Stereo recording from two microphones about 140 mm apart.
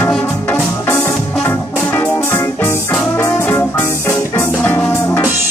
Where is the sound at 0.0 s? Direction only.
10° left (ahead or behind).